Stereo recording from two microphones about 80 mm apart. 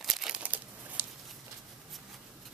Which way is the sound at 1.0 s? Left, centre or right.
Right.